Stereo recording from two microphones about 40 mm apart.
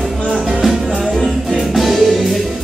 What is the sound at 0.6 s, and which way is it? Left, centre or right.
Music, centre.